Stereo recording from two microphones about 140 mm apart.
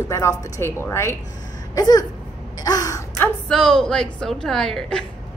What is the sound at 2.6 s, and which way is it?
Gasp, 25° left (ahead or behind).